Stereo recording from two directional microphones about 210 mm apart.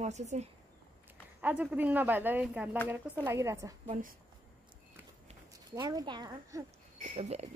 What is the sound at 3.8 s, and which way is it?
Speech, 35° right (ahead or behind).